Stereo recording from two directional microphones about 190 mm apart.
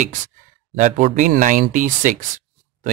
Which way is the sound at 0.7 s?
40° right (ahead or behind).